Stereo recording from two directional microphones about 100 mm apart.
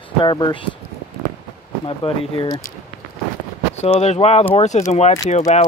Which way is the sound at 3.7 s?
90° left.